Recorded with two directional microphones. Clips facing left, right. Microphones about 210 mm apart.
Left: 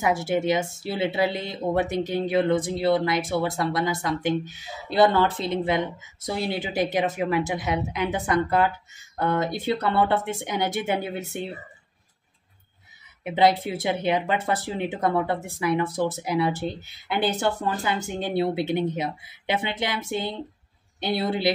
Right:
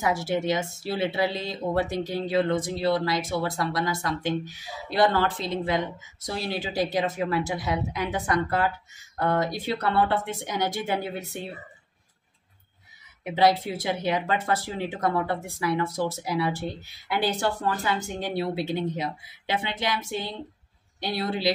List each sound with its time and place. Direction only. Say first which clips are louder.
0.0 s speech: left 2 dB; 20° left (ahead or behind)
13.2 s speech: left 1 dB; 20° left (ahead or behind)